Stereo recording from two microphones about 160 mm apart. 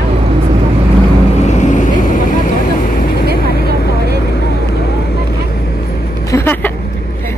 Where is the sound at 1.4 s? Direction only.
45° left (ahead or behind).